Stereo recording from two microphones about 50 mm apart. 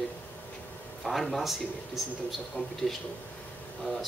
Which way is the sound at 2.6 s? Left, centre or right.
Left.